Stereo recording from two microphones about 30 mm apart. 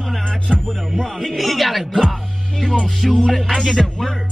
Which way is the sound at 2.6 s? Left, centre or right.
Left.